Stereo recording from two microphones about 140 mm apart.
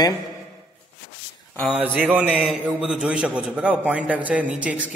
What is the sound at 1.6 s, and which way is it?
A man's voice, 10° right (ahead or behind).